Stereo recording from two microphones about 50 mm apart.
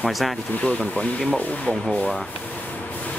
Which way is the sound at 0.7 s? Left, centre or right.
Left.